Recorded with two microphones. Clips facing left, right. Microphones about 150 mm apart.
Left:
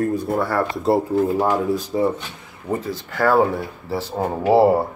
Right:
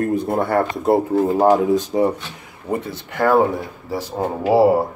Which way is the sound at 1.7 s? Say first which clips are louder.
Right 3 dB; 20° right (ahead or behind).